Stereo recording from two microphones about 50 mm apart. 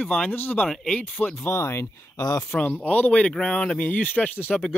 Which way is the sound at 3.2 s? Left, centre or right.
Centre.